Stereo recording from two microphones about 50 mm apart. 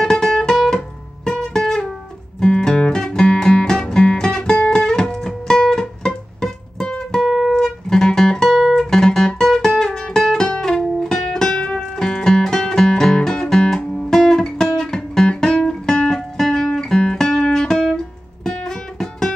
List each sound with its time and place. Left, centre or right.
0.0 s music: centre
7.2 s music: centre
7.5 s guitar: centre
8.5 s guitar: centre
8.7 s music: centre